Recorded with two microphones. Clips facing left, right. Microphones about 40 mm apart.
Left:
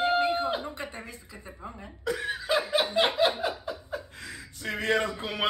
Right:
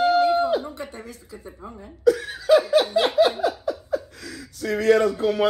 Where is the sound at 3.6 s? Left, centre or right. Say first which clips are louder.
Right 9 dB; left.